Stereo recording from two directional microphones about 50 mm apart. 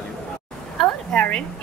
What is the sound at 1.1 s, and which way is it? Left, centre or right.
Speech, left.